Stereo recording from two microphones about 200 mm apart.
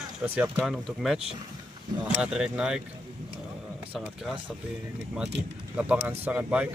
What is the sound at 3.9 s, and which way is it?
Speech, centre (ahead or behind).